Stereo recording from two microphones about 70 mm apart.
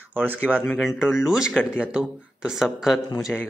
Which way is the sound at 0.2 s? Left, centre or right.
Right.